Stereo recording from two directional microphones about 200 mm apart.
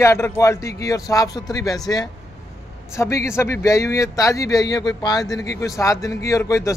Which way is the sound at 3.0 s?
15° left (ahead or behind).